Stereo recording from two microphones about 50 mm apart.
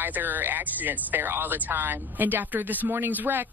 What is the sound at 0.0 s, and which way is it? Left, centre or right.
Speech, right.